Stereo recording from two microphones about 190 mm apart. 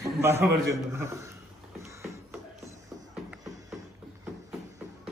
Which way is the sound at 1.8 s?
15° right (ahead or behind).